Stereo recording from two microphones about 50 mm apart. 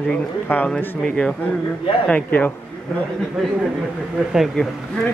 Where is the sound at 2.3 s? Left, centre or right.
Left.